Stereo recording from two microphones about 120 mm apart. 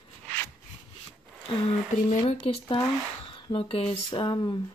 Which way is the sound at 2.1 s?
90° left.